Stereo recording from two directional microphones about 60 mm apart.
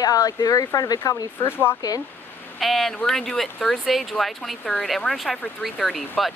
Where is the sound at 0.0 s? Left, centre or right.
Left.